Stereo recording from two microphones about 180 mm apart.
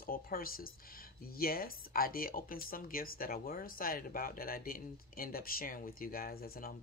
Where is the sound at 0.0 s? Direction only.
55° left (ahead or behind).